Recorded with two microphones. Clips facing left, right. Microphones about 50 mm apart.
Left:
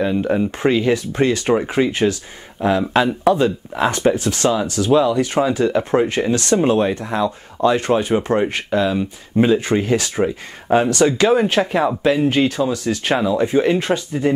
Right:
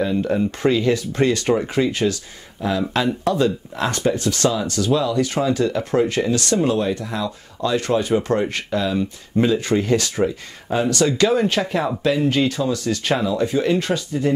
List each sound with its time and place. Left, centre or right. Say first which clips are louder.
0.0 s speech: left 2 dB; centre
10.7 s speech: left 4 dB; left
11.6 s speech: left 4 dB; centre; by 14.3 s left